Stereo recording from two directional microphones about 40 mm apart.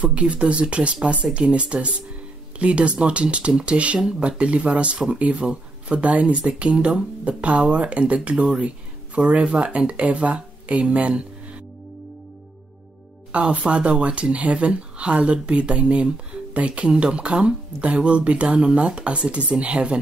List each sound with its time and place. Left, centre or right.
0.0 s speech: right
13.3 s speech: right